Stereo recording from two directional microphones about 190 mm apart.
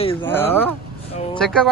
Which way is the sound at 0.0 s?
30° left (ahead or behind).